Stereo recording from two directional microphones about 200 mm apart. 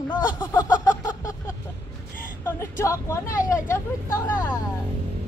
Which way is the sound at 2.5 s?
15° left (ahead or behind).